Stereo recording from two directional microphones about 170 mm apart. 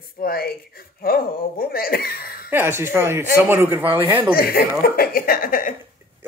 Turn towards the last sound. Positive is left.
turn(degrees=55)  # may be behind; listen again after turning